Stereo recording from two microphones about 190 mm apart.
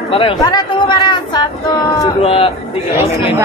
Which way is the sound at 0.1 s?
30° left (ahead or behind).